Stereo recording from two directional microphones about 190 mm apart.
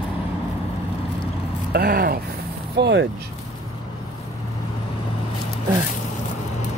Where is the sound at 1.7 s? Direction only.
55° right (ahead or behind).